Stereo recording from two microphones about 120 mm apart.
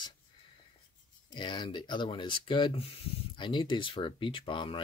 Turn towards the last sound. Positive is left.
turn(degrees=45)  # may be behind; listen again after turning